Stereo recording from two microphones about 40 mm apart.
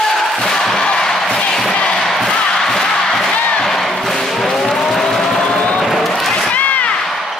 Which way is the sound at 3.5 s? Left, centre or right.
Centre.